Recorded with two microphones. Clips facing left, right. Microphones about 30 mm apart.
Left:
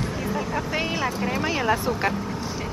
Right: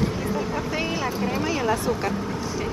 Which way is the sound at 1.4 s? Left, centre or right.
Centre.